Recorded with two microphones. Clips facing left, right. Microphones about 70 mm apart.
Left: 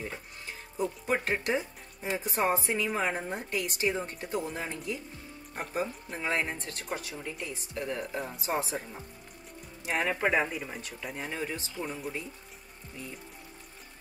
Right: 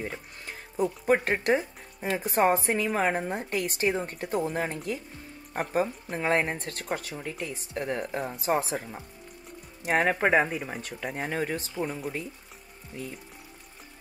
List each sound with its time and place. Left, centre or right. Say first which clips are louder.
0.5 s speech: right 4 dB; right
9.8 s speech: right 5 dB; right